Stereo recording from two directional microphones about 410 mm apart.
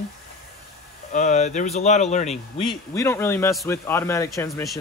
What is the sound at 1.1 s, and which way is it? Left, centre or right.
Speech, centre.